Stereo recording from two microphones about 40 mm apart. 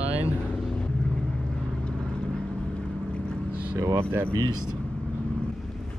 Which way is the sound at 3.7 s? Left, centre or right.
Right.